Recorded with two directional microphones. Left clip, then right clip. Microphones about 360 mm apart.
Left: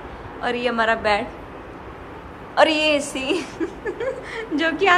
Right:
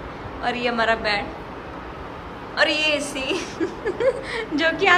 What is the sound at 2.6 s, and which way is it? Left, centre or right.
Speech, centre.